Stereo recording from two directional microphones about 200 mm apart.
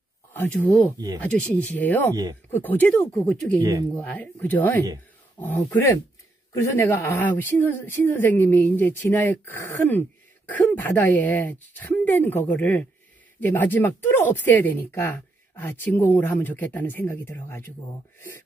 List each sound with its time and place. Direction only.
0.4 s speech: 10° left (ahead or behind)
0.9 s speech: 20° right (ahead or behind)
1.2 s speech: 5° left (ahead or behind)